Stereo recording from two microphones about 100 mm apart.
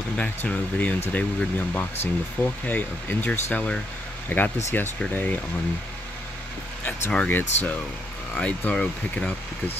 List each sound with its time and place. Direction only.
0.2 s speech: 15° left (ahead or behind)
7.2 s speech: 20° left (ahead or behind)